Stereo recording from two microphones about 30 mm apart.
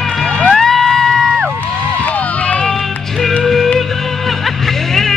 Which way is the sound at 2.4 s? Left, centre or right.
Left.